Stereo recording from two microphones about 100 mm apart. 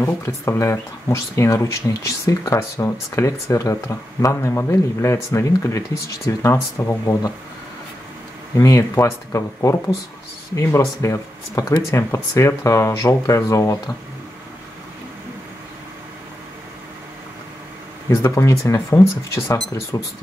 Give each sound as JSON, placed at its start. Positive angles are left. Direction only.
{"t": 0.0, "sound": "speech", "side_deg": 30}
{"t": 8.5, "sound": "speech", "side_deg": 35}
{"t": 18.1, "sound": "speech", "side_deg": 30}